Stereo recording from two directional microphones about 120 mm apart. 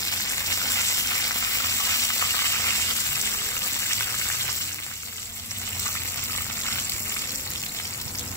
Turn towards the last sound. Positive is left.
turn(degrees=25)  # may be behind; listen again after turning